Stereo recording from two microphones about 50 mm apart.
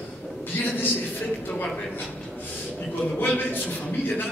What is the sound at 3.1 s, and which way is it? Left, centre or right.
Speech, left.